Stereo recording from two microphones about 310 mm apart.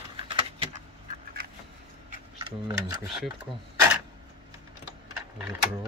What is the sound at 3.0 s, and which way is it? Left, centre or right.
Speech, centre.